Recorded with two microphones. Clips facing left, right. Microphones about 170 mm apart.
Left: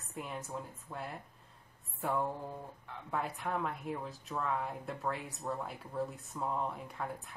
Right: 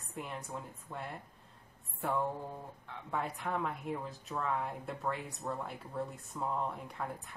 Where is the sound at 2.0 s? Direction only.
Centre (ahead or behind).